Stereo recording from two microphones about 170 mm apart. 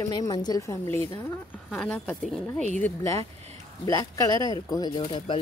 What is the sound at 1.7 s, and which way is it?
Speech, 5° left (ahead or behind).